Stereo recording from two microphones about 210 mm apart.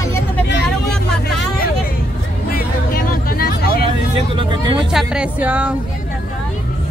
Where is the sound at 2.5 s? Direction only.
45° left (ahead or behind).